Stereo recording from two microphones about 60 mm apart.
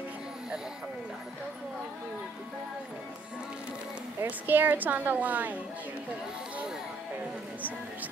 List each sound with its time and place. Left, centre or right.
4.2 s a woman's voice: right